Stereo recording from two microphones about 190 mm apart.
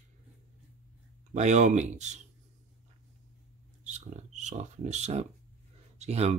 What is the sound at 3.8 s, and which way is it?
Speech, 40° right (ahead or behind).